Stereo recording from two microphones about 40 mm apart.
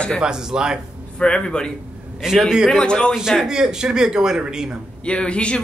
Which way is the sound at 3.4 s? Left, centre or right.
Centre.